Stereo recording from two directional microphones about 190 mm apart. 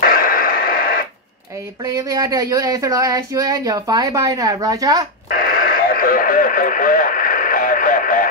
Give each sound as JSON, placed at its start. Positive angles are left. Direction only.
{"t": 0.0, "sound": "radio", "side_deg": 50}
{"t": 2.0, "sound": "speech", "side_deg": -20}
{"t": 5.5, "sound": "radio", "side_deg": 50}